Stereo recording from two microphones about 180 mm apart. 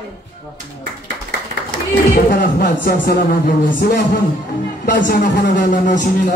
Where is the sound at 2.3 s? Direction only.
55° left (ahead or behind).